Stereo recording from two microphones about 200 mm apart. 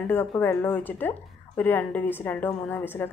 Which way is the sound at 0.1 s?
10° left (ahead or behind).